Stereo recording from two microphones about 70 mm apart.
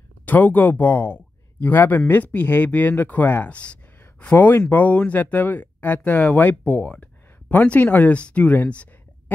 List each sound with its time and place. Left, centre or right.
0.2 s speech: left